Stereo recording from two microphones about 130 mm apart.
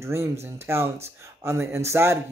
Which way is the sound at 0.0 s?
20° right (ahead or behind).